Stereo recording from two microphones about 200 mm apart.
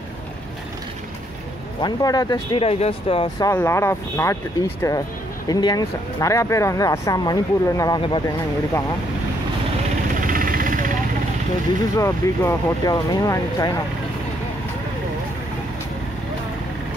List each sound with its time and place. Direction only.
1.8 s speech: 20° left (ahead or behind)
3.4 s speech: 15° left (ahead or behind)
10.2 s vehicle: 45° right (ahead or behind)
12.0 s speech: 15° left (ahead or behind)